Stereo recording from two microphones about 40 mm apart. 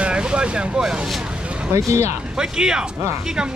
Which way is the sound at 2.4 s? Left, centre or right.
Centre.